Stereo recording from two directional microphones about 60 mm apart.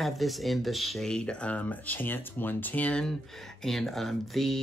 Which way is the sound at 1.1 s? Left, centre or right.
Centre.